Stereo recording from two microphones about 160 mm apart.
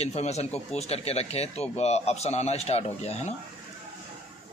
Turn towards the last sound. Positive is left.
turn(degrees=40)  # may be behind; listen again after turning